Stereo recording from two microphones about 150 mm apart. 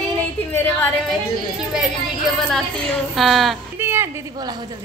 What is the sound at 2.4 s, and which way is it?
A woman's voice, centre (ahead or behind).